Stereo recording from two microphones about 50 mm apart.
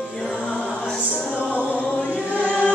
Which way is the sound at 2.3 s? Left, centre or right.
Right.